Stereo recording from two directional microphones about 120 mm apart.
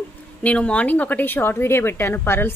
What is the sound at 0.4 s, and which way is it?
Speech, 10° left (ahead or behind).